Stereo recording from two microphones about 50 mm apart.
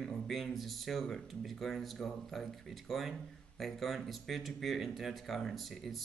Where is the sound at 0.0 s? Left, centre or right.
Centre.